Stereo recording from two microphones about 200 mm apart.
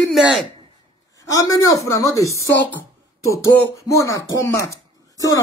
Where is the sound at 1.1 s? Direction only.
15° left (ahead or behind).